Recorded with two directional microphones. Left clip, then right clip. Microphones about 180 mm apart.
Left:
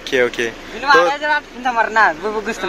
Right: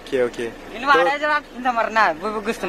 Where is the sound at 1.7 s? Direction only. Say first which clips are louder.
Left 4 dB; 20° right (ahead or behind).